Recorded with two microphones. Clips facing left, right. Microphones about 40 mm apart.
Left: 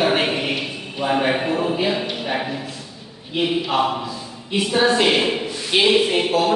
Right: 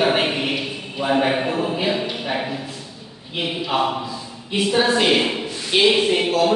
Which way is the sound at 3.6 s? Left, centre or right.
Centre.